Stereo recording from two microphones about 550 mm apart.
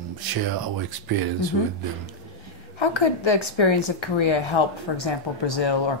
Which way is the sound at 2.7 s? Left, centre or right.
Left.